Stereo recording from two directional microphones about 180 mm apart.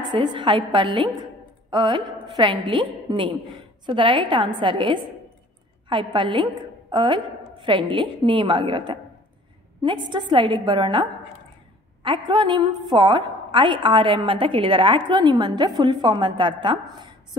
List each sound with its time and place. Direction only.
0.0 s a woman's voice: 25° right (ahead or behind)